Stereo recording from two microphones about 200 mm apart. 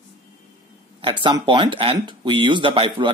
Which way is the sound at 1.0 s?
25° right (ahead or behind).